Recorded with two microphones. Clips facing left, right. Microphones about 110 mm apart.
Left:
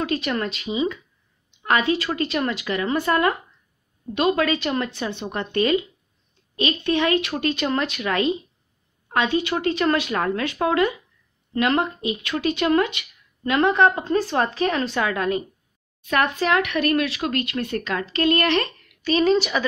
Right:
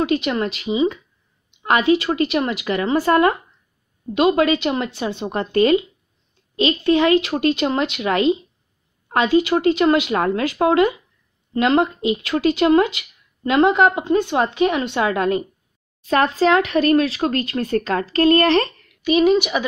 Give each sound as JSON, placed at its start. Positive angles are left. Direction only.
{"t": 0.0, "sound": "speech", "side_deg": -25}
{"t": 19.0, "sound": "speech", "side_deg": -15}